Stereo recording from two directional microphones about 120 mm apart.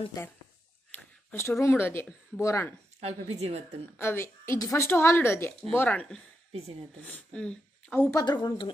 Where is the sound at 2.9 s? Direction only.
60° right (ahead or behind).